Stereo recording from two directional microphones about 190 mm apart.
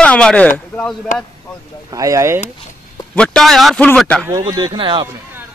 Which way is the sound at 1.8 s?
20° right (ahead or behind).